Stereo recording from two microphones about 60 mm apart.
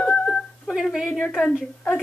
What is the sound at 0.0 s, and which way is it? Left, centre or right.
Dog, centre.